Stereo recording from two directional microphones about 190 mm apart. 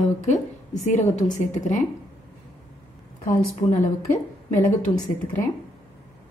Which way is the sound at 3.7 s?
45° left (ahead or behind).